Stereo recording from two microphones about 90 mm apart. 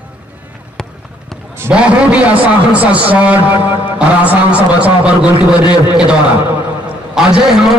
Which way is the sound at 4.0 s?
15° right (ahead or behind).